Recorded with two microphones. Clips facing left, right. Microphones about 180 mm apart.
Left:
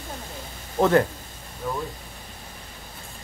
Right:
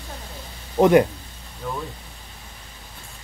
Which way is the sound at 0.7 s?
15° right (ahead or behind).